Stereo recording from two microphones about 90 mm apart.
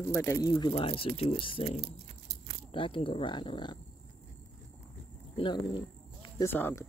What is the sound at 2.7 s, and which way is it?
Speech, 75° left (ahead or behind).